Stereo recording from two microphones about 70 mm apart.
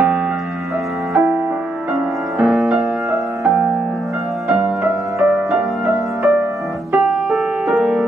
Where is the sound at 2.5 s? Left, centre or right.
Centre.